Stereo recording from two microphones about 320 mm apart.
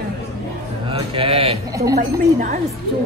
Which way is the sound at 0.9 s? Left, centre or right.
Centre.